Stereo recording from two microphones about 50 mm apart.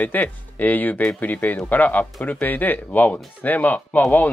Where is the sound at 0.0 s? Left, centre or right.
Left.